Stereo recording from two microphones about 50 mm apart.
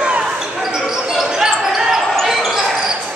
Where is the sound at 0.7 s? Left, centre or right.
Centre.